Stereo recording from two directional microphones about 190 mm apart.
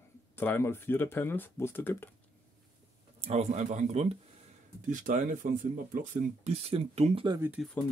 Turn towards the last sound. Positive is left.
turn(degrees=-10)  # may be behind; listen again after turning